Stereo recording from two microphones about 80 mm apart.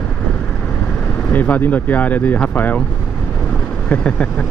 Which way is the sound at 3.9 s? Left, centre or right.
Centre.